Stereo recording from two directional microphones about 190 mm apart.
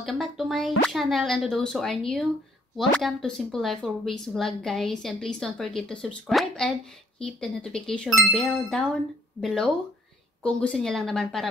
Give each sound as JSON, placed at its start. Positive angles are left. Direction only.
{"t": 0.0, "sound": "speech", "side_deg": 0}